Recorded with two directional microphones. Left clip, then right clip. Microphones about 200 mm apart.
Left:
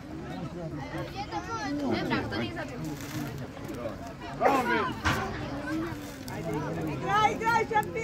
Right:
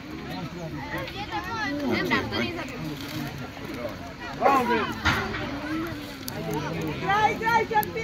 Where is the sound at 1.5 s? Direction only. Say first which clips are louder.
Right 4 dB; 50° left (ahead or behind).